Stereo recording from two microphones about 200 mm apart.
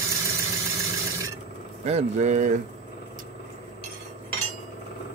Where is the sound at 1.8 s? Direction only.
35° right (ahead or behind).